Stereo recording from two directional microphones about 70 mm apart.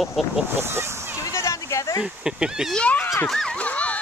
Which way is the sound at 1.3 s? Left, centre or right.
Left.